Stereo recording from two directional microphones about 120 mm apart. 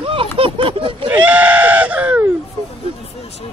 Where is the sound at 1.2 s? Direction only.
10° right (ahead or behind).